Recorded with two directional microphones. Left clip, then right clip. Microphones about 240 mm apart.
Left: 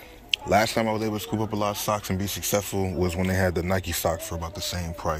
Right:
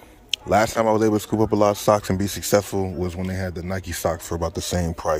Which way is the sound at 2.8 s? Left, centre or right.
Centre.